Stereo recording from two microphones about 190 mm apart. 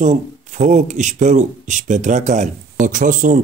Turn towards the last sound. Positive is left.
turn(degrees=-45)  # may be behind; listen again after turning